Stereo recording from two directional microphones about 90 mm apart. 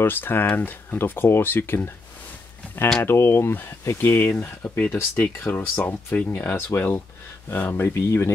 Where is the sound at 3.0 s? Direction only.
25° left (ahead or behind).